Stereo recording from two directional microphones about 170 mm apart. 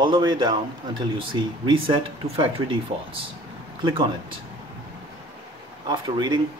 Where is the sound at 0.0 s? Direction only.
25° right (ahead or behind).